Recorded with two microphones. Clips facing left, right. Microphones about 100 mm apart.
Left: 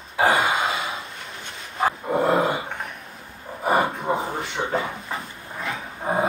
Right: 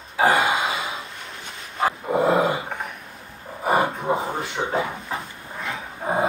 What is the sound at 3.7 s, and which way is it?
Snort, centre (ahead or behind).